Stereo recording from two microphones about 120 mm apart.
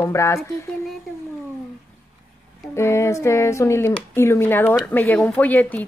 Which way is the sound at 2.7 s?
25° left (ahead or behind).